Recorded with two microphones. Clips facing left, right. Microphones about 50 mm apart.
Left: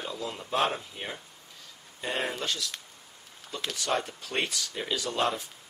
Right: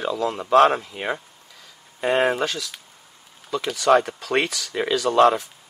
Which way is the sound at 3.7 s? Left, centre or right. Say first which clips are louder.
Right 13 dB; right.